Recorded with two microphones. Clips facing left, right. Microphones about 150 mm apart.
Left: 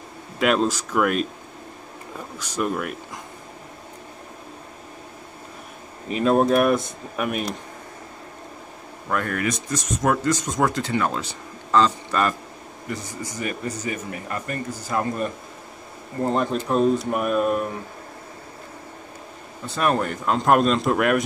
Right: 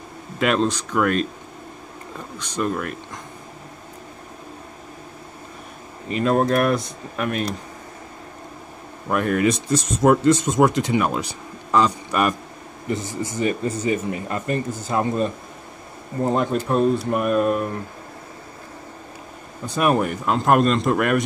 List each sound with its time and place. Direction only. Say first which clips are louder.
0.4 s a man's voice: even; 5° left (ahead or behind)
2.3 s a man's voice: right 1 dB; 5° left (ahead or behind)
6.0 s a man's voice: left 1 dB; centre (ahead or behind)
9.1 s speech: right 5 dB; 20° right (ahead or behind)
16.6 s a man's voice: right 1 dB; centre (ahead or behind)
19.6 s a man's voice: right 3 dB; 10° right (ahead or behind)